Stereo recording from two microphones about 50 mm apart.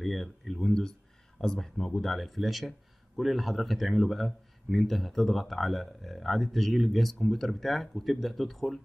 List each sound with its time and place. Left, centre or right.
0.0 s speech: centre